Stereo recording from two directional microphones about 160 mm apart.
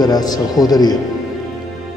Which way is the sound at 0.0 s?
25° left (ahead or behind).